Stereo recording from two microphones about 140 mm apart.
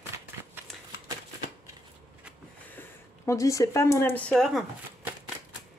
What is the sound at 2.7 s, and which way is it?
Speech, 20° left (ahead or behind).